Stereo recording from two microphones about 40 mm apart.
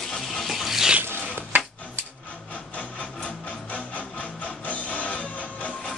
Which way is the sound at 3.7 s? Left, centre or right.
Left.